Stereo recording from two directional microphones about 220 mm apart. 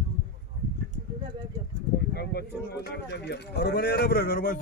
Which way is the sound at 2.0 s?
45° left (ahead or behind).